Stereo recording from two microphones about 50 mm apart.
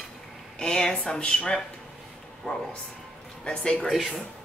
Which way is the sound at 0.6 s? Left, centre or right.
Centre.